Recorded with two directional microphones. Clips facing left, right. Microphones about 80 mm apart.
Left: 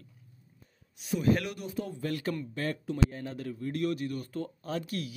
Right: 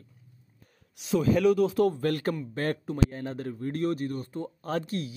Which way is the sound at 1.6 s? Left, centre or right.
Right.